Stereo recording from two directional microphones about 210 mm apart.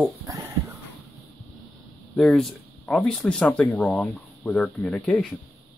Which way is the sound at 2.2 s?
Centre (ahead or behind).